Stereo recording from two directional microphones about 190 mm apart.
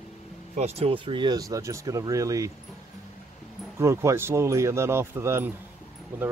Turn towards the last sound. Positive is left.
turn(degrees=-10)  # may be behind; listen again after turning